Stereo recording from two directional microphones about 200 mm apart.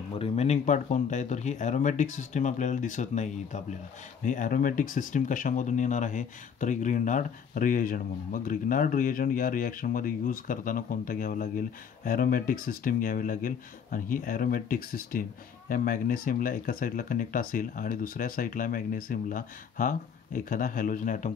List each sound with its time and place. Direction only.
0.2 s speech: 30° left (ahead or behind)